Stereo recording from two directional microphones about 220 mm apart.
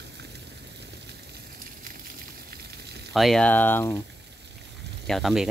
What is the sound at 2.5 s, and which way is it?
Frying, 50° right (ahead or behind).